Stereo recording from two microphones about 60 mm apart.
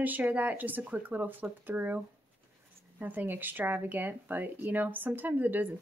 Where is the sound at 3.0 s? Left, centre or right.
Right.